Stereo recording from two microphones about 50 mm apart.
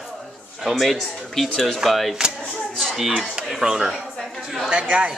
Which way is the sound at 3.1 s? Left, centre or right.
Centre.